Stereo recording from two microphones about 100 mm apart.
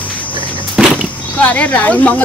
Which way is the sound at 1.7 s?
20° left (ahead or behind).